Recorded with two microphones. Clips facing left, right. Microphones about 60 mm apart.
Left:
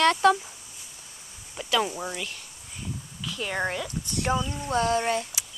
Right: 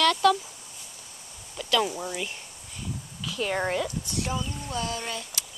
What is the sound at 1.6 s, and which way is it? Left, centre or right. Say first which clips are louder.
Speech: even; centre.